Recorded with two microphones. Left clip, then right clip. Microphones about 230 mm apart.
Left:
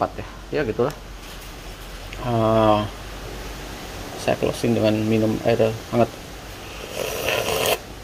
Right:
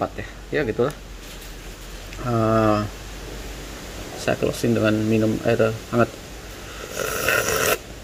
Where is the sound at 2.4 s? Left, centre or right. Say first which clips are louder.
Left 2 dB; centre.